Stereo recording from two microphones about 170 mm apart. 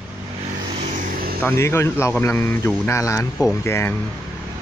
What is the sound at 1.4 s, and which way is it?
A man's voice, 15° left (ahead or behind).